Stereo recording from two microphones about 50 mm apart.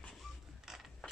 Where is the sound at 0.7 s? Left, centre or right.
Centre.